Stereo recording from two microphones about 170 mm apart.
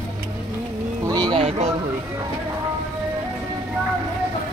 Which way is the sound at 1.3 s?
35° right (ahead or behind).